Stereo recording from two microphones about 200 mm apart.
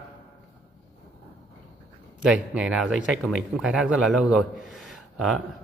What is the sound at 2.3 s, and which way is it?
Speech, 5° right (ahead or behind).